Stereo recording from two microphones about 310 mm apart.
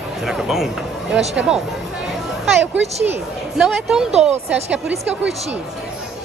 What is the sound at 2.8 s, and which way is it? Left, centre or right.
Speech, right.